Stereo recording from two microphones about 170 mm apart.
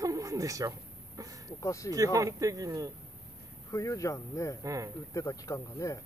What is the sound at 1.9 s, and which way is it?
Speech, 20° right (ahead or behind).